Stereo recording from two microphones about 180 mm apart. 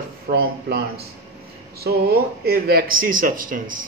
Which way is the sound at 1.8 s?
60° right (ahead or behind).